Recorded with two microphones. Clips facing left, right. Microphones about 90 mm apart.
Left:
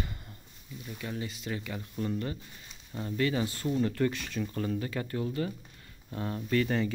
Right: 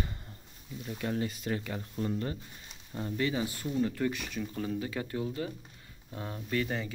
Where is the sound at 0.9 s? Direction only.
45° right (ahead or behind).